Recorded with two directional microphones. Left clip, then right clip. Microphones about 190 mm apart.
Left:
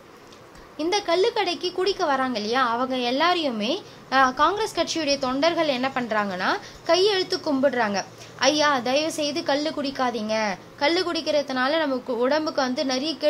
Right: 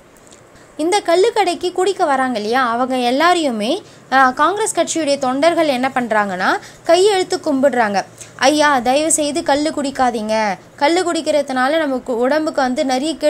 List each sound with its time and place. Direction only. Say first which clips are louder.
0.7 s a woman's voice: right 8 dB; 20° right (ahead or behind)